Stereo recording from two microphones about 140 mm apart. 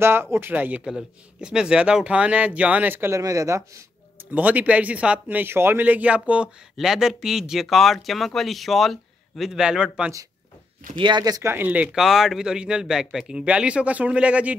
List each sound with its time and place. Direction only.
0.0 s a man's voice: 15° right (ahead or behind)
11.0 s speech: 30° right (ahead or behind)
11.5 s a man's voice: 10° right (ahead or behind)